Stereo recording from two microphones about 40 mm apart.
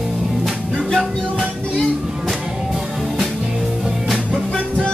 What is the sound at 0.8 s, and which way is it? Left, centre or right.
Music, centre.